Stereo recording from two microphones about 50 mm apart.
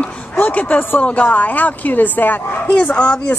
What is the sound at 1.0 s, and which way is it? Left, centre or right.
Speech, left.